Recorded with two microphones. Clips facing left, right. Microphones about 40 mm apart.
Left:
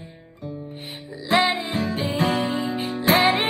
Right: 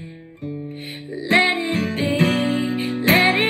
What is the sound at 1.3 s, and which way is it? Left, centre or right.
Music, right.